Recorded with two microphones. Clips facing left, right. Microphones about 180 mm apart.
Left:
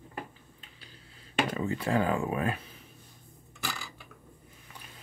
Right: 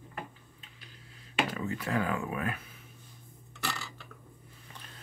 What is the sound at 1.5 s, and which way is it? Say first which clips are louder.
Speech: left 4 dB; 30° left (ahead or behind).